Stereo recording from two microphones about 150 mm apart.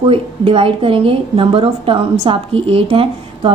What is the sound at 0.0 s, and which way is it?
A woman's voice, 35° right (ahead or behind).